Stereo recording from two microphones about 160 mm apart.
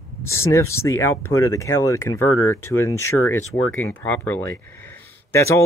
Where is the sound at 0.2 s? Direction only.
15° left (ahead or behind).